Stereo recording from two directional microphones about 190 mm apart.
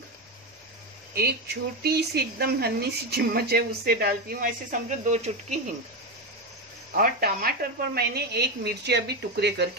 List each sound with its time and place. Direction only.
1.1 s speech: 55° right (ahead or behind); by 5.3 s 40° right (ahead or behind)
7.0 s speech: 50° right (ahead or behind)